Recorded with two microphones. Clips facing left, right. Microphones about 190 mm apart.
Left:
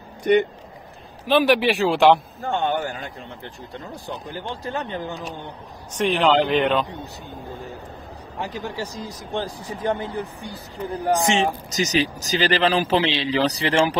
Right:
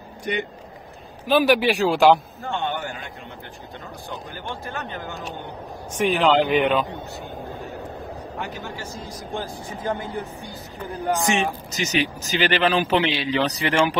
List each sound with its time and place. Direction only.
0.2 s speech: 55° left (ahead or behind)
1.2 s speech: centre (ahead or behind)
2.4 s speech: 40° left (ahead or behind)
4.5 s speech: 25° left (ahead or behind)
5.9 s speech: 5° right (ahead or behind)
8.4 s speech: 35° left (ahead or behind)